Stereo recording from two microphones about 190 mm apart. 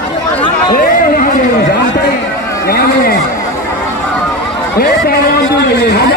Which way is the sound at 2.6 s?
55° left (ahead or behind).